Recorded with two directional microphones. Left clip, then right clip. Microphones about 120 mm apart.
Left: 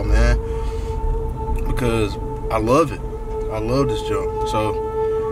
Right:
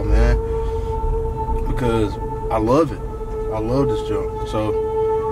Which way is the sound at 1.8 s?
10° left (ahead or behind).